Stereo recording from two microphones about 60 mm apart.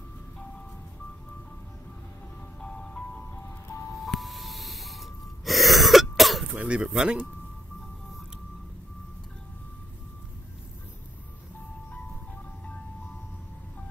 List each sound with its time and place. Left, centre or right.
2.6 s music: centre
4.0 s music: centre
6.5 s speech: right